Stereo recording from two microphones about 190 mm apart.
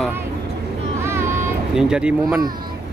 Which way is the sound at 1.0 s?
15° right (ahead or behind).